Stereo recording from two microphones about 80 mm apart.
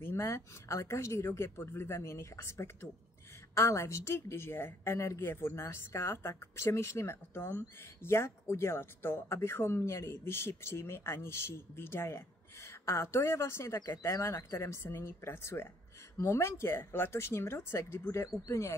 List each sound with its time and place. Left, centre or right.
0.0 s a woman's voice: left